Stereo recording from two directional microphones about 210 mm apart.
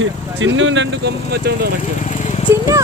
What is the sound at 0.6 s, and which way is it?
Speech, 60° right (ahead or behind).